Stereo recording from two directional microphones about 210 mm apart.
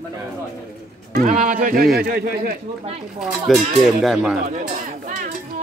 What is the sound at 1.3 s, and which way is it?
Speech, 35° right (ahead or behind).